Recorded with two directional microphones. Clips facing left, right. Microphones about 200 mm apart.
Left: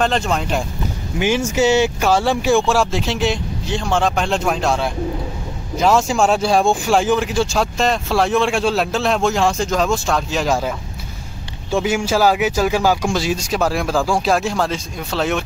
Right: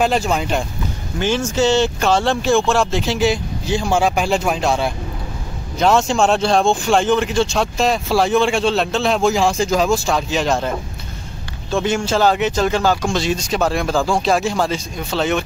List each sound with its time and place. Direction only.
0.0 s speech: 5° right (ahead or behind)
1.2 s speech: 10° left (ahead or behind)
11.7 s speech: 10° left (ahead or behind)